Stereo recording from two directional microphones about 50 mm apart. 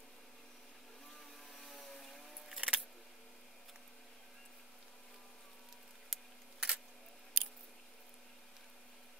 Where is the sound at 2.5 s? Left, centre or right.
Centre.